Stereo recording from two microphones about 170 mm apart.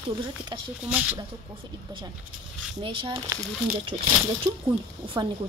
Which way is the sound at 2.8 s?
30° right (ahead or behind).